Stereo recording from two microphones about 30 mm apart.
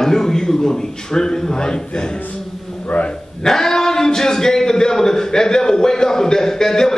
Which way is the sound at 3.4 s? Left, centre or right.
Centre.